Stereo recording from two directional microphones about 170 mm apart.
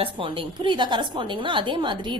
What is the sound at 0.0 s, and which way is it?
A woman's voice, 30° right (ahead or behind).